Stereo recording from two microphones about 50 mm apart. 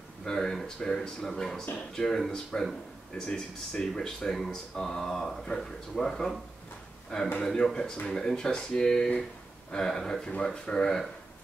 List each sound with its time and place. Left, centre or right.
0.2 s speech: centre
3.2 s speech: centre
7.1 s a man's voice: centre